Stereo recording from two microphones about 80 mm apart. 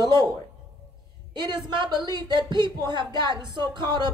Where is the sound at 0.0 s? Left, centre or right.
Right.